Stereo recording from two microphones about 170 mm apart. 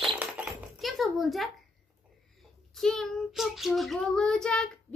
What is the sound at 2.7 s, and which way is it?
Child singing, centre (ahead or behind).